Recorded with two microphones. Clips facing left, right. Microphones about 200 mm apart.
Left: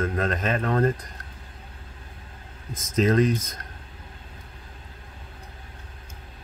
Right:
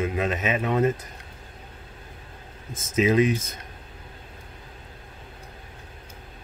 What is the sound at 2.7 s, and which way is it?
Speech, 25° right (ahead or behind).